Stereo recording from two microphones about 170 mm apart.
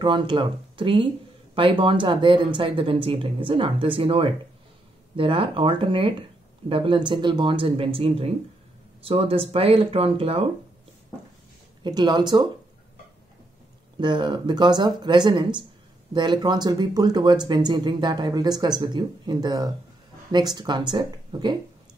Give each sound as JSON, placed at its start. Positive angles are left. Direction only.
{"t": 0.0, "sound": "speech", "side_deg": -30}
{"t": 11.8, "sound": "speech", "side_deg": -25}
{"t": 13.9, "sound": "speech", "side_deg": -30}